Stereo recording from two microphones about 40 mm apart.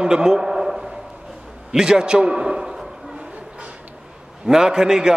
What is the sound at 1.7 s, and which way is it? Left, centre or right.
A man's voice, centre.